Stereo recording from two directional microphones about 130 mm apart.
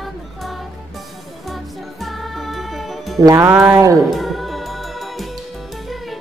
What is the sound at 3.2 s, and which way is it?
Speech, 20° right (ahead or behind).